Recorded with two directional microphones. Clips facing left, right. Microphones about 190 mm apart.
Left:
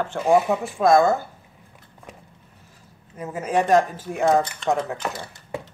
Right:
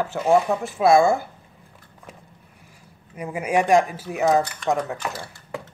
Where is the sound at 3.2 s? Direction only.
10° right (ahead or behind).